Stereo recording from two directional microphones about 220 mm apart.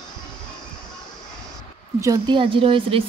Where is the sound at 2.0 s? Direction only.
20° right (ahead or behind).